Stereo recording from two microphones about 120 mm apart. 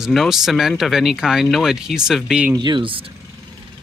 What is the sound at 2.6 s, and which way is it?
Speech, 45° right (ahead or behind).